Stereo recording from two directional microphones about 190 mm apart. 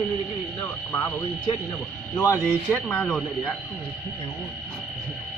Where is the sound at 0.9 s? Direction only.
10° left (ahead or behind).